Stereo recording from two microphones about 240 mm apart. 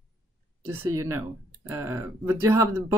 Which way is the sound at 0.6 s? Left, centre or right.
Centre.